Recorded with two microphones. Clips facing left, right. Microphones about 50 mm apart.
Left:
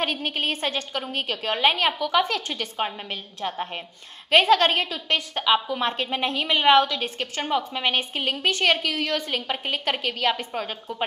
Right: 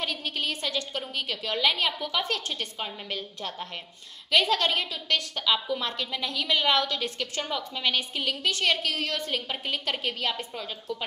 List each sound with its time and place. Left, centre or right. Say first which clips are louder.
0.0 s a woman's voice: left 5 dB; left
4.3 s a woman's voice: left 6 dB; left
5.3 s a woman's voice: left 5 dB; left